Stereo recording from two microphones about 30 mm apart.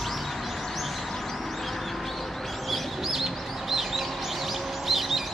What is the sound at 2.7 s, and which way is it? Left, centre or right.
Bird, centre.